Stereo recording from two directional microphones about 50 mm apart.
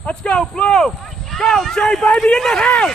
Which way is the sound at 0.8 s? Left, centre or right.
Centre.